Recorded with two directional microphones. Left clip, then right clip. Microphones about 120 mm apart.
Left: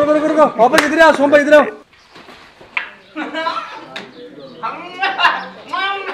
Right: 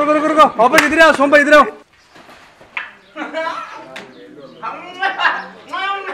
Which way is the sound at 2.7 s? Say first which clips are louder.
Left 3 dB; centre (ahead or behind).